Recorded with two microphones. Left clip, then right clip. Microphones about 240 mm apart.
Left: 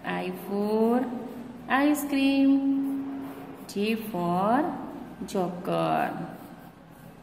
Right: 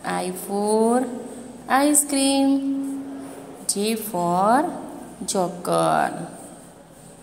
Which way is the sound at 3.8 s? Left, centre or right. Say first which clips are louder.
Right 5 dB; centre.